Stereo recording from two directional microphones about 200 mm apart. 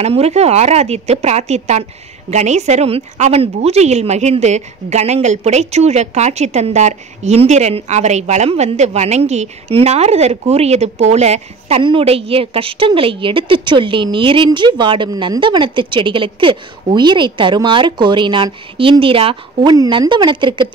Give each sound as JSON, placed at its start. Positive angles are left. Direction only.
{"t": 0.0, "sound": "a woman's voice", "side_deg": -30}